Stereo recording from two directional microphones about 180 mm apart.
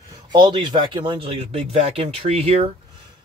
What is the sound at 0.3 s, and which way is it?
Speech, 25° right (ahead or behind).